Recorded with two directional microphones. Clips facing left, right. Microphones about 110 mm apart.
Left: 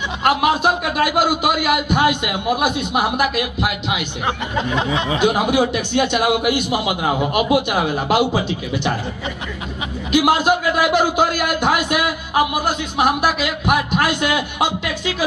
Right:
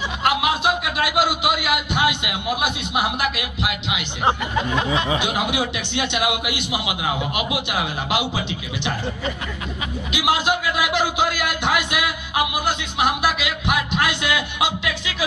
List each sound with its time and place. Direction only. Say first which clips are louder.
0.2 s a man's voice: left 4 dB; 45° left (ahead or behind)
4.6 s a sound: left 1 dB; 25° left (ahead or behind)
5.2 s a man's voice: left 7 dB; 45° left (ahead or behind)
10.1 s a man's voice: left 6 dB; 45° left (ahead or behind)